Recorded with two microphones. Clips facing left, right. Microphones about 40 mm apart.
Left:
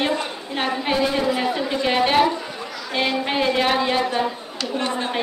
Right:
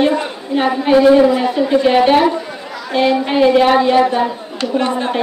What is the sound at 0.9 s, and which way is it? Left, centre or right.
Speech, centre.